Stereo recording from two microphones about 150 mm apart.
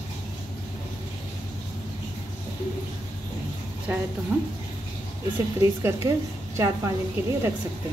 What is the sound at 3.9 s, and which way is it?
Speech, 15° right (ahead or behind).